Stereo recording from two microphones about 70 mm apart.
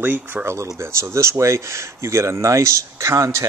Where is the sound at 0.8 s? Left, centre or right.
Right.